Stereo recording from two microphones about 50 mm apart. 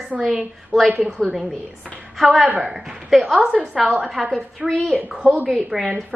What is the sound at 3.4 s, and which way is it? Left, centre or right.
A woman's voice, right.